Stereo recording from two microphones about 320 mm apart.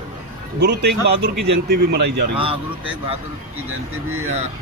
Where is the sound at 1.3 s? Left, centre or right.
Right.